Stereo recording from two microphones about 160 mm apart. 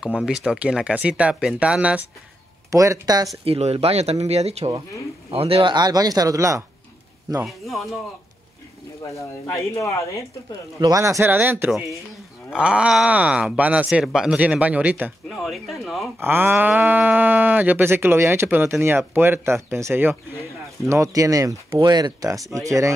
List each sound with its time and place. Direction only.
0.0 s speech: 5° right (ahead or behind)
2.7 s speech: 20° right (ahead or behind)
3.4 s speech: 40° right (ahead or behind); by 6.6 s 20° right (ahead or behind)
7.4 s speech: centre (ahead or behind)
9.0 s speech: 20° left (ahead or behind)
10.8 s speech: 20° right (ahead or behind); by 16.1 s centre (ahead or behind)
16.2 s speech: 15° right (ahead or behind)